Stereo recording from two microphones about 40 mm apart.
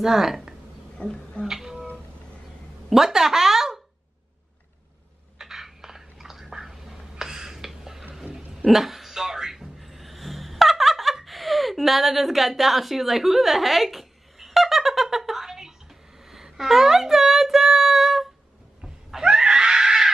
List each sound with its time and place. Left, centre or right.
0.0 s speech: centre
1.0 s speech: left
2.9 s speech: centre
5.4 s a sound: centre
19.2 s screaming: centre